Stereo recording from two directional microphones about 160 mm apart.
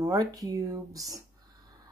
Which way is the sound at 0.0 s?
20° right (ahead or behind).